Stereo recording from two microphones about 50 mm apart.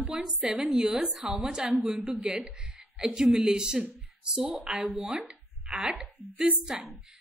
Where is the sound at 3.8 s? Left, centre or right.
Centre.